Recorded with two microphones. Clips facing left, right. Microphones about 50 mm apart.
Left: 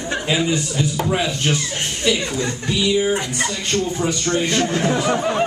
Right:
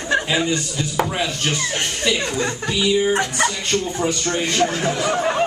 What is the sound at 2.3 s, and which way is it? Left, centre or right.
Speech, right.